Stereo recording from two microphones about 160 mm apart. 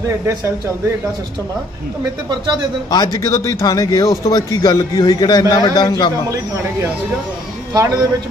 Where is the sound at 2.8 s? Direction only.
25° left (ahead or behind).